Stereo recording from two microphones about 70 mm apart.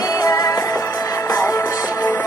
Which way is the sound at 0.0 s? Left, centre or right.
Left.